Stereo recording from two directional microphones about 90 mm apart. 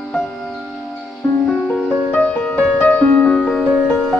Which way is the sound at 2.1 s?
20° left (ahead or behind).